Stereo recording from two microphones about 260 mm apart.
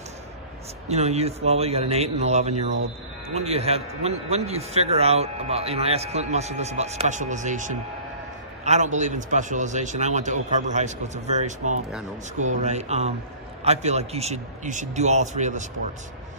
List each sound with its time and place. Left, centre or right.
0.8 s a man's voice: right